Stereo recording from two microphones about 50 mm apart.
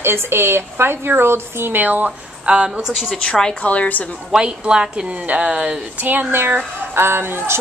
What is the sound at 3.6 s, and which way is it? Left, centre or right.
Speech, left.